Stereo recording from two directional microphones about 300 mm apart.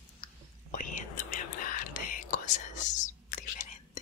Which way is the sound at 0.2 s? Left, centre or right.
Left.